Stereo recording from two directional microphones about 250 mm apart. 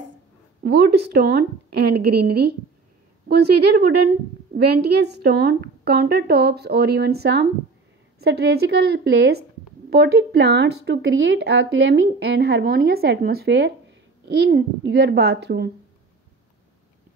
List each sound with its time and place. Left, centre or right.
0.7 s speech: right
4.6 s a woman's voice: right